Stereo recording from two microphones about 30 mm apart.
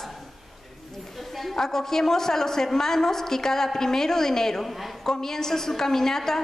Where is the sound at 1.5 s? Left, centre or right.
Centre.